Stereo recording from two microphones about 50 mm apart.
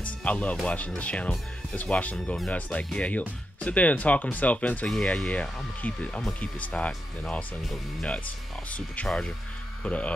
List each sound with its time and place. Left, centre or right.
0.2 s speech: left
9.0 s speech: centre
9.8 s speech: left